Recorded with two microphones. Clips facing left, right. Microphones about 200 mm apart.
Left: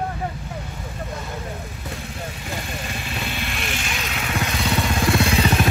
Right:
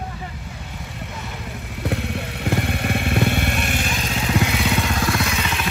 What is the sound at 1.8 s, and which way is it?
Motorcycle, 70° right (ahead or behind).